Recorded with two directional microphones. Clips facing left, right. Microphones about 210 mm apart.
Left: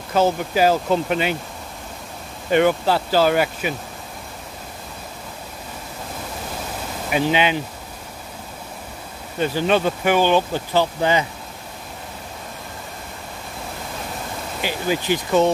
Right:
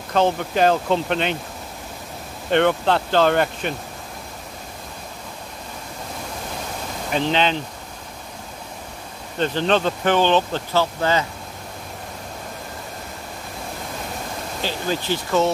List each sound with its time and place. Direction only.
0.1 s speech: 5° left (ahead or behind)
2.5 s speech: 5° left (ahead or behind)
7.1 s speech: 10° left (ahead or behind)
9.4 s speech: 10° left (ahead or behind)
14.6 s speech: 15° left (ahead or behind)